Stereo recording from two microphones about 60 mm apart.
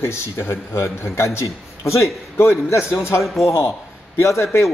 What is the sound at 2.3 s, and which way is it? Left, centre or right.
A man's voice, left.